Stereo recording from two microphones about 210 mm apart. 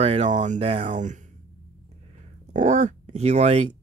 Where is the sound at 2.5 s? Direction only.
35° right (ahead or behind).